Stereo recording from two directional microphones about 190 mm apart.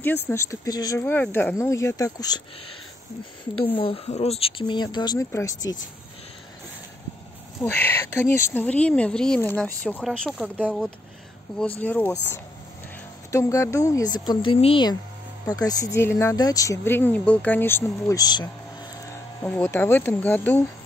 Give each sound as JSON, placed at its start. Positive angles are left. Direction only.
{"t": 0.0, "sound": "speech", "side_deg": 10}
{"t": 3.6, "sound": "speech", "side_deg": 30}
{"t": 7.6, "sound": "speech", "side_deg": 10}
{"t": 19.4, "sound": "speech", "side_deg": 10}